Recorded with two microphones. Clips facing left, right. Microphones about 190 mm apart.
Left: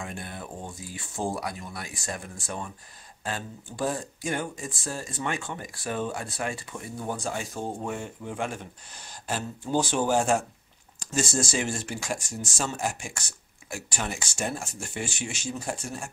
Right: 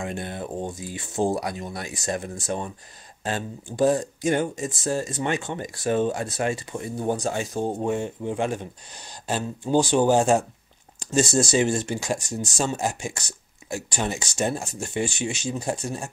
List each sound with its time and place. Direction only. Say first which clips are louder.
0.0 s speech: right 7 dB; 25° right (ahead or behind)
3.7 s speech: right 9 dB; 20° right (ahead or behind)